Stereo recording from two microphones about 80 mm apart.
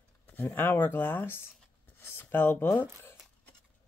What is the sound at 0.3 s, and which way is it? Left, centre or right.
Speech, left.